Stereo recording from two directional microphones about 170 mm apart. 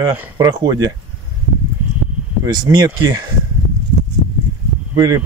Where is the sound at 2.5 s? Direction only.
25° right (ahead or behind).